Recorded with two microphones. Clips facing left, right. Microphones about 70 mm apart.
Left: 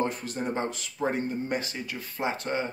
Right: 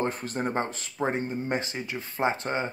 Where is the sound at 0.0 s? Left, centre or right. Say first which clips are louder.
Right 1 dB; right.